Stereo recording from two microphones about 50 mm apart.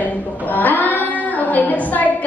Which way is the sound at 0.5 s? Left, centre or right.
Left.